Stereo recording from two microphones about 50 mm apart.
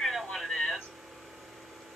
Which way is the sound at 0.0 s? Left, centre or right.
Centre.